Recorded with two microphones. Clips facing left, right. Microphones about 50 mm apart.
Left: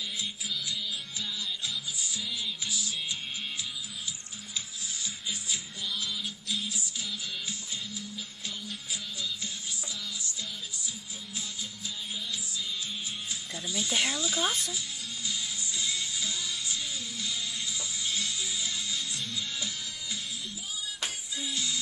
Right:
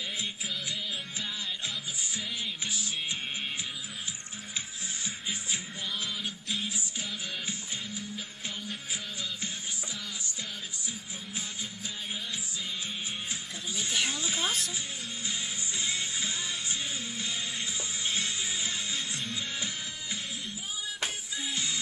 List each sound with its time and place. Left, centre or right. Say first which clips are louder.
0.2 s music: even; right
5.0 s music: right 1 dB; right
13.3 s music: left 1 dB; right
14.0 s speech: left 2 dB; right
15.2 s music: even; right